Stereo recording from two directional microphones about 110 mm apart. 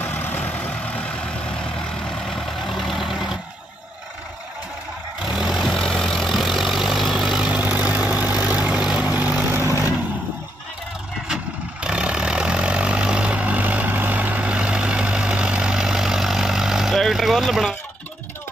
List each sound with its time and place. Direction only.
0.0 s vehicle: 20° left (ahead or behind); by 3.3 s 5° right (ahead or behind)
5.2 s vehicle: 5° right (ahead or behind); by 9.8 s 20° right (ahead or behind)
11.8 s vehicle: 10° right (ahead or behind)